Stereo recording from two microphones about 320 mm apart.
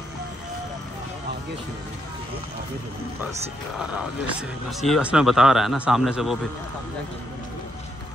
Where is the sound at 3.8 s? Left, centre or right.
Centre.